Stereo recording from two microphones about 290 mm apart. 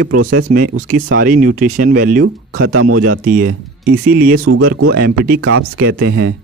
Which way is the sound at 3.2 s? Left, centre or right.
Right.